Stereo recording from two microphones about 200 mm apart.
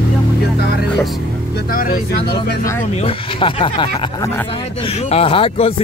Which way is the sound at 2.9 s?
25° left (ahead or behind).